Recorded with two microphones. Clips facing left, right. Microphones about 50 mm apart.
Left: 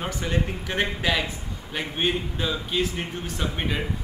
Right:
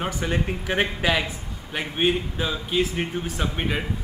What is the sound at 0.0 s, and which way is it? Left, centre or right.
A man's voice, centre.